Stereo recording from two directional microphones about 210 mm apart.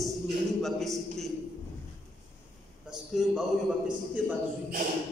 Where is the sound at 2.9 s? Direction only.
Centre (ahead or behind).